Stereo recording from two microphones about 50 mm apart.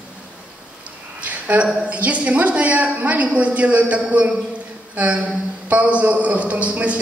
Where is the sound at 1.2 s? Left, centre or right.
Right.